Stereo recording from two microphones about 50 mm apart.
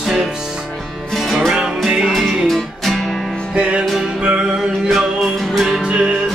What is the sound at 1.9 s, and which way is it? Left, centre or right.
Music, centre.